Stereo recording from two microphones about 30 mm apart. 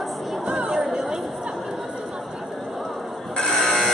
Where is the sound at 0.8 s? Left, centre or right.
Centre.